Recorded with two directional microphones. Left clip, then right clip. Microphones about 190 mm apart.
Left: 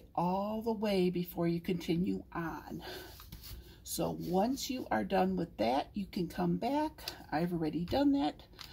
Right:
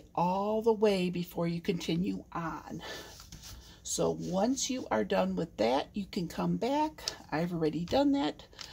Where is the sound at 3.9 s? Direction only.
50° right (ahead or behind).